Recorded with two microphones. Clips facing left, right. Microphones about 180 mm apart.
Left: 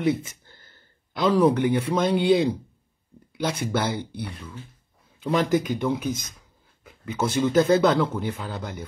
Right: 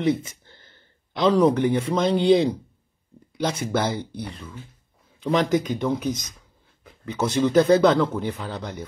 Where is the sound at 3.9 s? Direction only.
55° left (ahead or behind).